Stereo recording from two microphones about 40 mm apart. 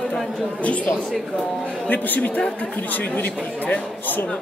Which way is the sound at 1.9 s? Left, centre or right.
Left.